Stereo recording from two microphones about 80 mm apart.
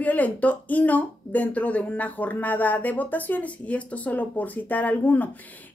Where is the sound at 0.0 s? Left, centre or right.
Centre.